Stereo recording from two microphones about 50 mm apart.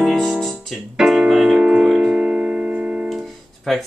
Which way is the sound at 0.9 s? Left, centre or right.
Centre.